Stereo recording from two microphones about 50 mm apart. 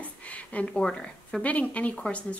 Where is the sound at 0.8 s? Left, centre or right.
Centre.